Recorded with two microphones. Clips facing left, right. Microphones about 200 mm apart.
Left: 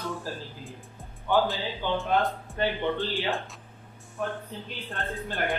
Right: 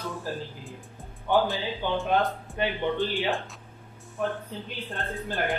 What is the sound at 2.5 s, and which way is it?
Speech, 15° right (ahead or behind).